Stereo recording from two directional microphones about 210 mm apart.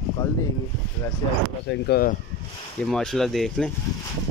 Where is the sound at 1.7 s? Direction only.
45° left (ahead or behind).